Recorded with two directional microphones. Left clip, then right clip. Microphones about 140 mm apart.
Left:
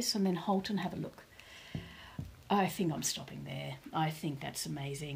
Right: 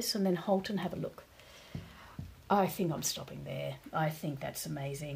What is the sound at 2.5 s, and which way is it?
Speech, 40° right (ahead or behind).